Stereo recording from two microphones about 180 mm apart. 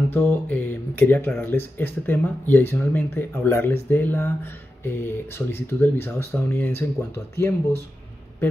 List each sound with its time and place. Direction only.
0.1 s speech: 10° left (ahead or behind)